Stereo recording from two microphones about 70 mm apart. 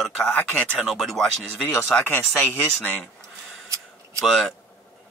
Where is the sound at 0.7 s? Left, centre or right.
Centre.